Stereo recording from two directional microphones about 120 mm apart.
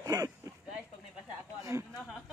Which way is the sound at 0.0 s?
30° right (ahead or behind).